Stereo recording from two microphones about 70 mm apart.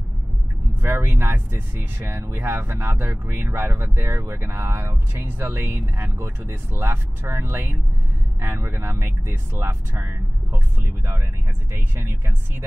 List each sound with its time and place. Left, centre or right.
0.8 s speech: right